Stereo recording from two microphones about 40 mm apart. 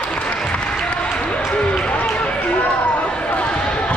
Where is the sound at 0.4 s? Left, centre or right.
Centre; by 3.1 s left.